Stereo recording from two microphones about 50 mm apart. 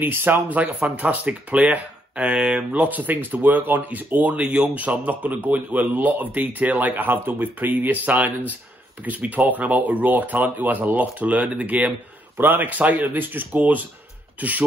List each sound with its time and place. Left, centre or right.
0.0 s speech: right
0.6 s speech: right
12.4 s speech: right